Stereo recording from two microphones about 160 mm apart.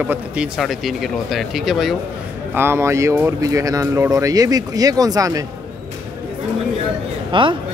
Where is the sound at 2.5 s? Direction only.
15° right (ahead or behind).